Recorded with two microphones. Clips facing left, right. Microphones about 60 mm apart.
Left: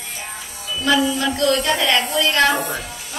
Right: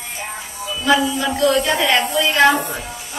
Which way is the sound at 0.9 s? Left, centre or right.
Right.